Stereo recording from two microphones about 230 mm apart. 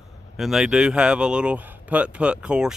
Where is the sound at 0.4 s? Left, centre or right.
Centre.